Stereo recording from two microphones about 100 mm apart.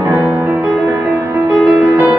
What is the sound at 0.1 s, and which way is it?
Music, 20° right (ahead or behind).